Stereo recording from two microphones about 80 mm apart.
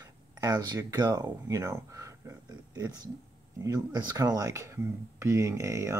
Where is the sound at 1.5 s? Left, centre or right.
Right.